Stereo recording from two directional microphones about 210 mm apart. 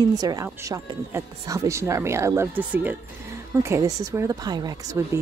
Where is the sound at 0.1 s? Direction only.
20° right (ahead or behind).